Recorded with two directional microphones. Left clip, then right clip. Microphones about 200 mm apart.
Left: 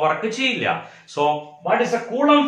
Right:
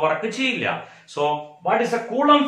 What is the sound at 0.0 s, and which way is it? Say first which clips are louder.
Speech: left 1 dB; 10° left (ahead or behind).